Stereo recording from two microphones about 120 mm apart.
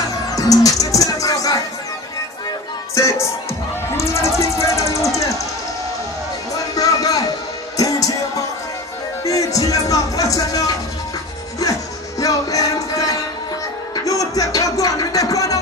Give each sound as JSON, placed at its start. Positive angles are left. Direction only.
{"t": 0.1, "sound": "music", "side_deg": 30}
{"t": 2.9, "sound": "music", "side_deg": 25}
{"t": 3.9, "sound": "a sound", "side_deg": 25}
{"t": 6.5, "sound": "music", "side_deg": 30}